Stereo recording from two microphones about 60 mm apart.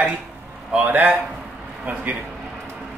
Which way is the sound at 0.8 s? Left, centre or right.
Right.